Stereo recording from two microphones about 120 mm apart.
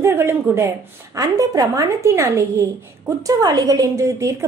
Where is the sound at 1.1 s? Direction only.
30° right (ahead or behind).